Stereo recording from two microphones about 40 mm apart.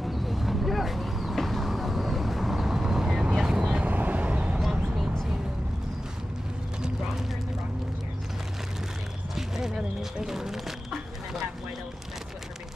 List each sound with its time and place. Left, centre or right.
0.0 s vehicle: centre
3.8 s vehicle: right
9.3 s a sound: centre